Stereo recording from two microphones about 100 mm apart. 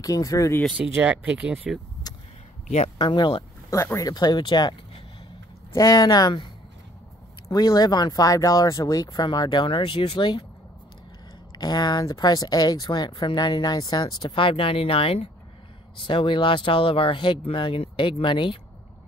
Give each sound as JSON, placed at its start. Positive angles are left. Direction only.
{"t": 0.0, "sound": "speech", "side_deg": 35}
{"t": 0.9, "sound": "speech", "side_deg": -15}
{"t": 2.1, "sound": "a sound", "side_deg": 40}
{"t": 2.7, "sound": "speech", "side_deg": 70}
{"t": 3.7, "sound": "speech", "side_deg": 30}
{"t": 4.1, "sound": "speech", "side_deg": 45}
{"t": 7.5, "sound": "speech", "side_deg": 40}
{"t": 11.5, "sound": "speech", "side_deg": 45}
{"t": 16.0, "sound": "speech", "side_deg": 60}